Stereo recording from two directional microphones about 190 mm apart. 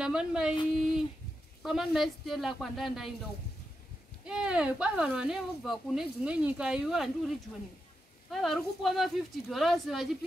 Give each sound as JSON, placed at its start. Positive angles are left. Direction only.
{"t": 0.0, "sound": "speech", "side_deg": -5}
{"t": 1.6, "sound": "speech", "side_deg": 0}
{"t": 4.3, "sound": "speech", "side_deg": -5}